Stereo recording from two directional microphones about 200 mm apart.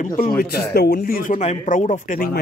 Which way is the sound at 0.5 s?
55° left (ahead or behind).